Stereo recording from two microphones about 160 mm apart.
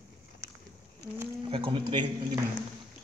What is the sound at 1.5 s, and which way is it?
Speech, 30° right (ahead or behind).